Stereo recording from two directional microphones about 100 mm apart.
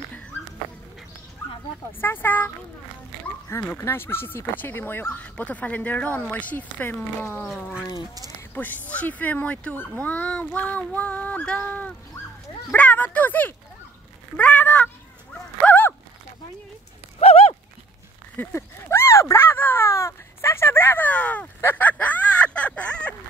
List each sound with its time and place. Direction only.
1.9 s speech: 20° left (ahead or behind)
8.5 s speech: 15° left (ahead or behind)
15.6 s a sound: 20° left (ahead or behind)
17.2 s horse: 80° left
18.3 s speech: 15° left (ahead or behind)
18.9 s a sound: 30° left (ahead or behind); by 23.1 s 10° left (ahead or behind)